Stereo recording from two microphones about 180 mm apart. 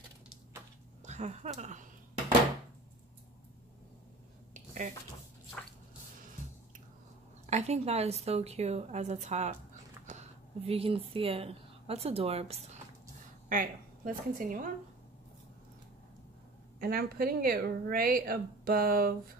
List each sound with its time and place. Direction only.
1.0 s speech: 40° right (ahead or behind)
7.4 s a woman's voice: 40° right (ahead or behind)
13.5 s a woman's voice: 50° right (ahead or behind)
16.8 s speech: 55° right (ahead or behind)